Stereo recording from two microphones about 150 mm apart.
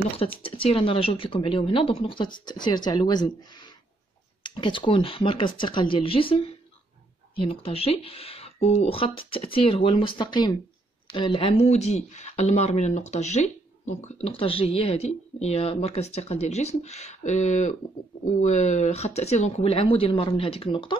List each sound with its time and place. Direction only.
0.2 s speech: 40° left (ahead or behind)